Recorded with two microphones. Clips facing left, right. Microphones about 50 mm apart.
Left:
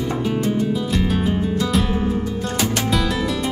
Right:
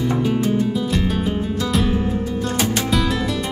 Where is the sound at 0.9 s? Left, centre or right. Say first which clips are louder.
Left 1 dB; centre.